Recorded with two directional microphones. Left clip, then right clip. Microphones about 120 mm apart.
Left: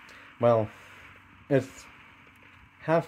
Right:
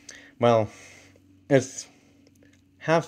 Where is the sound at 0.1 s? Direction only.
30° right (ahead or behind).